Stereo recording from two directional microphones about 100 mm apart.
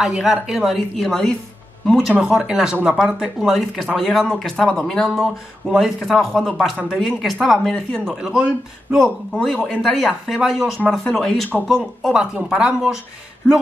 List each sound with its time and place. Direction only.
0.0 s speech: 5° right (ahead or behind)